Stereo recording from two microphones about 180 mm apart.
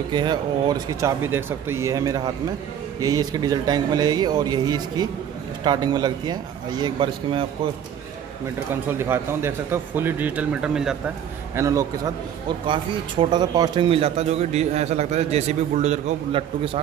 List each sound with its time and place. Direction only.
0.1 s speech: 25° right (ahead or behind)
8.8 s speech: 15° right (ahead or behind)
11.5 s speech: 20° right (ahead or behind)
12.6 s speech: 30° right (ahead or behind)